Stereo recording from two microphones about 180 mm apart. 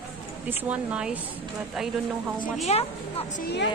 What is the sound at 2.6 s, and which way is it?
Speech, 35° left (ahead or behind).